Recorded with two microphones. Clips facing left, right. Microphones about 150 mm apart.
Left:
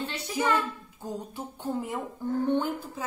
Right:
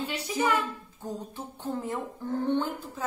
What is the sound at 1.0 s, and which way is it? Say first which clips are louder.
A woman's voice: left 1 dB; 10° left (ahead or behind).